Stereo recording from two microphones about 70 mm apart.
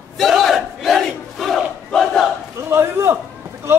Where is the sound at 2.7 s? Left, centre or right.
Right.